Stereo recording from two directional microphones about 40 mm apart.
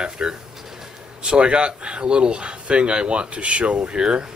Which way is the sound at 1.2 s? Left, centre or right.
Right.